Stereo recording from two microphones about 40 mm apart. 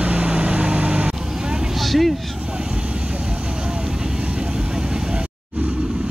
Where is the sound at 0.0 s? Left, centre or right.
Right.